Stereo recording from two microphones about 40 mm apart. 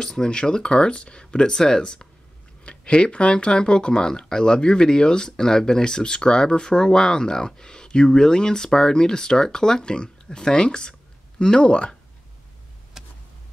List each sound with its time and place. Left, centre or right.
0.0 s speech: centre
13.0 s vehicle: centre